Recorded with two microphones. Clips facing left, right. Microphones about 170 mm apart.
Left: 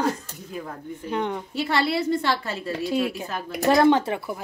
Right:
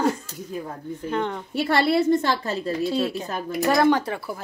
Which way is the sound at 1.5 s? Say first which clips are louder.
Right 5 dB; 55° right (ahead or behind).